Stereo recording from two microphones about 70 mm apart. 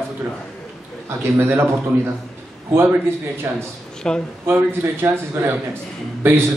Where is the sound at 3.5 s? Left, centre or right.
Right.